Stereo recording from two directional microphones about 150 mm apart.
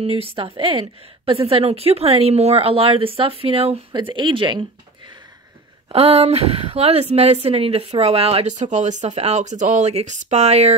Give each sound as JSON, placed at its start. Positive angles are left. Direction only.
{"t": 0.0, "sound": "speech", "side_deg": -40}